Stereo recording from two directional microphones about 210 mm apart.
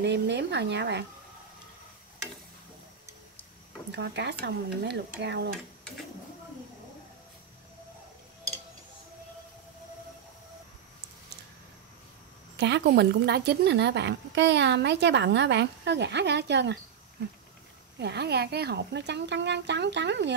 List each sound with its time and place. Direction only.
0.0 s speech: 55° right (ahead or behind)
3.9 s speech: 55° right (ahead or behind)
12.5 s speech: 55° right (ahead or behind)
17.9 s speech: 55° right (ahead or behind)